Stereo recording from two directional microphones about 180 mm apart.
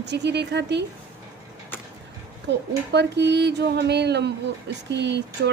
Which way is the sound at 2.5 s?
75° right (ahead or behind).